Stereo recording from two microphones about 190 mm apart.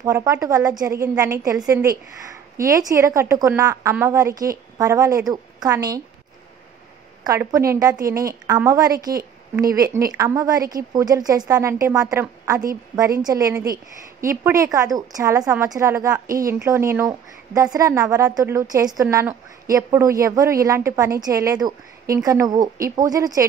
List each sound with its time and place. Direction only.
0.0 s a woman's voice: 15° right (ahead or behind)
7.2 s a woman's voice: 15° right (ahead or behind)